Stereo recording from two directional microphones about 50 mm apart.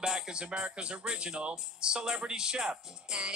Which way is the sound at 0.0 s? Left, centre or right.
Centre.